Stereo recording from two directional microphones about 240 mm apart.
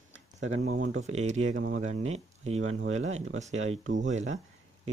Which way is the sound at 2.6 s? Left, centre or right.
Right.